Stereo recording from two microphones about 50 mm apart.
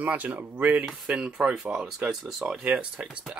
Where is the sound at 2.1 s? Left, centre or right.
Centre.